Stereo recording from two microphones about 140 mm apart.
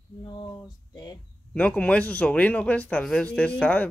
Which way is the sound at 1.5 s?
10° left (ahead or behind).